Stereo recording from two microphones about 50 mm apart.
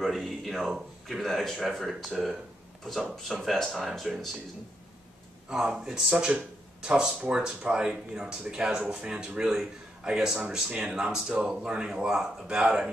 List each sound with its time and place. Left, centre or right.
0.0 s speech: centre
5.5 s speech: centre